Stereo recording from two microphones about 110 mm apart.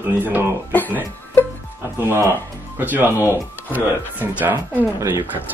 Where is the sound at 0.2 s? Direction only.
20° right (ahead or behind).